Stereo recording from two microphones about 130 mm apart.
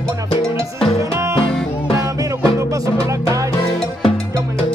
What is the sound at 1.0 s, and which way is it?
Music, 20° right (ahead or behind).